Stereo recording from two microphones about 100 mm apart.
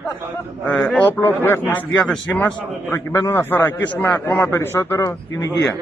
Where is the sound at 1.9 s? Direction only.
15° left (ahead or behind); by 5.5 s 30° left (ahead or behind).